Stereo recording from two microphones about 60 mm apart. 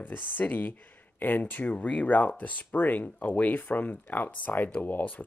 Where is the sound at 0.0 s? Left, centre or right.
Left.